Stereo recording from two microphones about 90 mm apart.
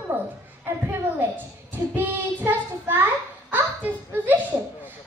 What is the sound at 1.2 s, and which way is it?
Child singing, 20° right (ahead or behind).